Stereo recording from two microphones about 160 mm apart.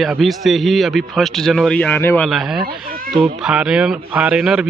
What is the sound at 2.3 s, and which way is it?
A man's voice, centre (ahead or behind).